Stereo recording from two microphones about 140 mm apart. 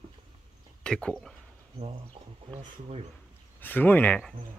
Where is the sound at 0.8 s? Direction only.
5° left (ahead or behind).